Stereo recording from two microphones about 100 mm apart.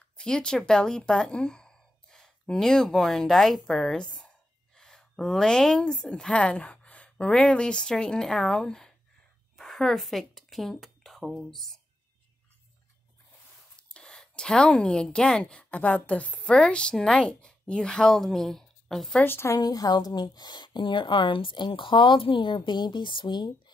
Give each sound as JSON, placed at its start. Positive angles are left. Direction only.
{"t": 0.2, "sound": "a woman's voice", "side_deg": 10}
{"t": 13.7, "sound": "speech", "side_deg": 10}
{"t": 19.2, "sound": "a woman's voice", "side_deg": 25}
{"t": 19.6, "sound": "a woman's voice", "side_deg": 40}